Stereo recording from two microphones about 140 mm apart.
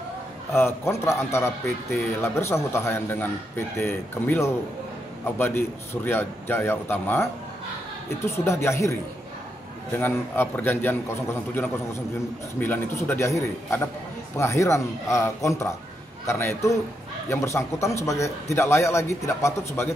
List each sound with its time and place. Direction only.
0.6 s a man's voice: 20° left (ahead or behind)
8.3 s a man's voice: 20° left (ahead or behind)
9.9 s a man's voice: 15° left (ahead or behind)
14.3 s a man's voice: 20° left (ahead or behind)